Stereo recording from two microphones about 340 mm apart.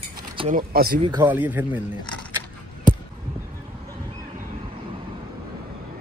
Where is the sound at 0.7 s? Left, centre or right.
Right.